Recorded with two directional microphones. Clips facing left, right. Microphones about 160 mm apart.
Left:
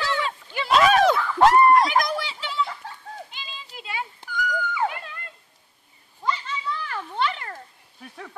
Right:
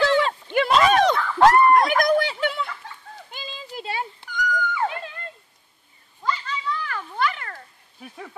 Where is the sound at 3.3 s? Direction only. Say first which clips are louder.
Right 6 dB; 40° right (ahead or behind).